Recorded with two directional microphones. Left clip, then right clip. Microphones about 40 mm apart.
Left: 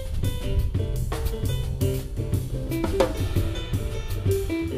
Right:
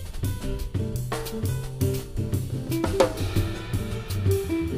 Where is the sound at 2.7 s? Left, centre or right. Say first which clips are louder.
Right 1 dB; right.